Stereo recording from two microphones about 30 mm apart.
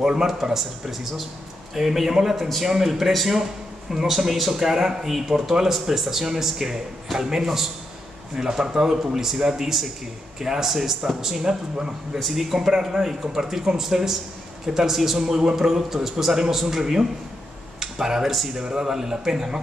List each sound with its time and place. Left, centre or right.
0.0 s speech: right
12.3 s speech: centre
17.7 s a sound: centre
18.6 s speech: right
18.9 s speech: centre